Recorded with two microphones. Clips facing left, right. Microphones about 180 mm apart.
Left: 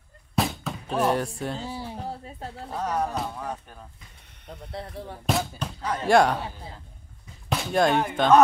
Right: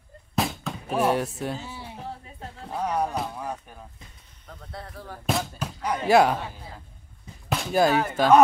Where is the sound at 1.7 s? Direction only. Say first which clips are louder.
Left 4 dB; 40° left (ahead or behind).